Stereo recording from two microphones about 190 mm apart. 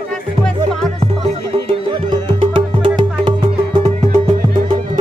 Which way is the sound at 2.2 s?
25° right (ahead or behind).